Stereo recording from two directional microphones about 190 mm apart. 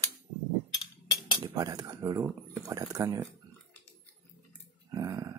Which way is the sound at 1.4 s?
20° right (ahead or behind).